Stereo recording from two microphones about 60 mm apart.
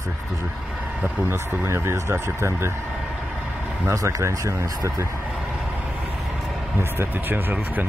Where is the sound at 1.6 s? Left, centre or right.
Right.